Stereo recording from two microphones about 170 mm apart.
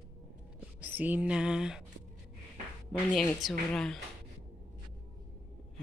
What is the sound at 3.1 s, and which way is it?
Speech, 5° left (ahead or behind).